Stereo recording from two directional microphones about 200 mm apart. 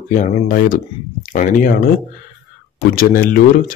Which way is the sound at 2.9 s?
50° left (ahead or behind).